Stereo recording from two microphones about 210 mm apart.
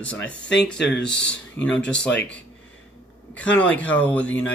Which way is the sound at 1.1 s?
55° left (ahead or behind).